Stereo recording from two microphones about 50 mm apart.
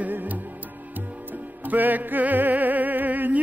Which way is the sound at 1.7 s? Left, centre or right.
Right.